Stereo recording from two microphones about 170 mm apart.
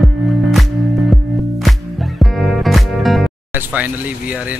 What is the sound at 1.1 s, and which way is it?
Music, centre (ahead or behind).